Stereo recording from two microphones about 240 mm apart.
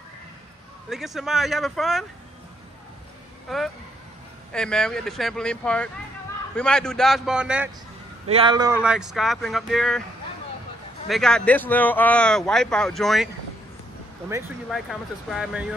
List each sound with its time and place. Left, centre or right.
0.8 s speech: centre
3.4 s speech: centre
8.3 s a man's voice: right
8.8 s speech: centre
11.1 s speech: centre
14.7 s speech: centre